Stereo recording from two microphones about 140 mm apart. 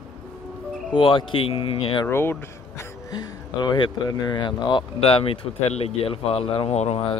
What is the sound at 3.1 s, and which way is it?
Speech, 30° left (ahead or behind).